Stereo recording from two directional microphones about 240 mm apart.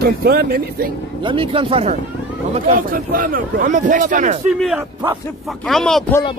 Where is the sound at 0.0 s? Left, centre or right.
Right.